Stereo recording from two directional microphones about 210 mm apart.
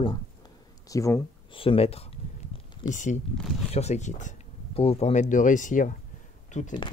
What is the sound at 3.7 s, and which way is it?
Speech, 30° left (ahead or behind).